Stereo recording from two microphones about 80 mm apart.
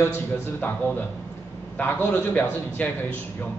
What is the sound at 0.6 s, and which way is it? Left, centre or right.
A man's voice, left.